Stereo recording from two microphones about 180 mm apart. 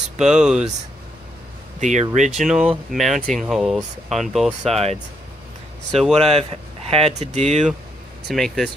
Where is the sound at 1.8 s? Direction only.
40° right (ahead or behind).